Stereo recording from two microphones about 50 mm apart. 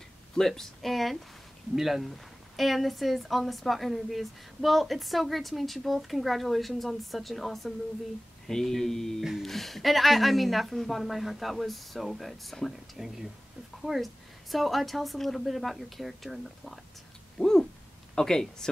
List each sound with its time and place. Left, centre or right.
0.4 s speech: centre
17.4 s speech: centre